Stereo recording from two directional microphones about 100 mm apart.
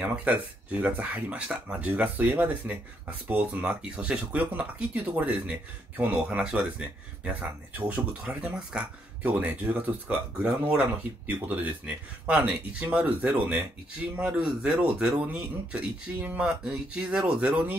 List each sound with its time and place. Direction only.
0.0 s speech: 15° right (ahead or behind)